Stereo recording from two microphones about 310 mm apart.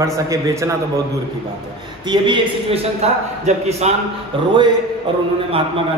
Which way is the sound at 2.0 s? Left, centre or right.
Centre.